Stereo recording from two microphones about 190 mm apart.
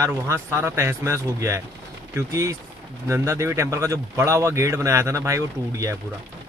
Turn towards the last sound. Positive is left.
turn(degrees=-15)  # may be behind; listen again after turning